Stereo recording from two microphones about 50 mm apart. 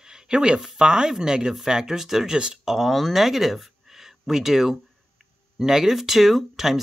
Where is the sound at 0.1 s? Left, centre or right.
Centre.